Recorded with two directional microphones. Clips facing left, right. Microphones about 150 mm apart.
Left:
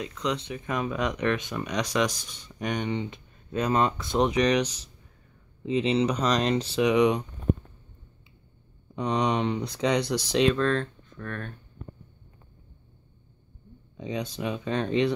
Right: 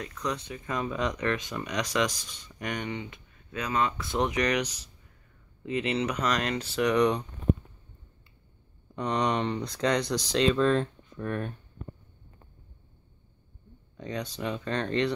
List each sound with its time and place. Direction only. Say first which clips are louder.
0.2 s speech: left 3 dB; 20° left (ahead or behind)
2.7 s speech: left 5 dB; 20° left (ahead or behind)
4.0 s speech: left 4 dB; 20° left (ahead or behind)
5.7 s speech: left 5 dB; 20° left (ahead or behind)
8.9 s speech: left 2 dB; 10° left (ahead or behind)
10.5 s speech: right 1 dB; 10° right (ahead or behind)
13.9 s speech: left 3 dB; 15° left (ahead or behind)